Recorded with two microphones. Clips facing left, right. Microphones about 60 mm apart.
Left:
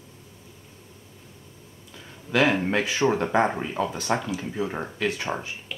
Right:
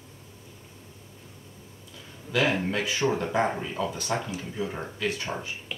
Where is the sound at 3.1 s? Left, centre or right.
Left.